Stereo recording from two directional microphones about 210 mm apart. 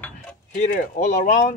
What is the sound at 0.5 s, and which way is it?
Speech, 35° left (ahead or behind).